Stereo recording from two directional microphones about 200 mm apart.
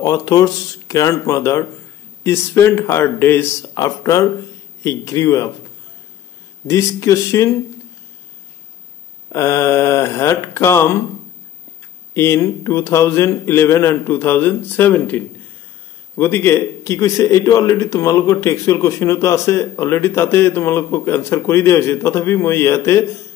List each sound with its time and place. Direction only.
0.0 s a man's voice: 20° left (ahead or behind)
6.7 s a man's voice: 15° left (ahead or behind)
9.3 s a man's voice: 15° left (ahead or behind)
12.1 s a man's voice: 15° left (ahead or behind)